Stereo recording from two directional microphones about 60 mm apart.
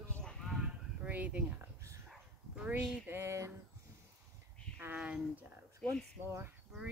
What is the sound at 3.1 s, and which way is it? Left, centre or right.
Speech, right.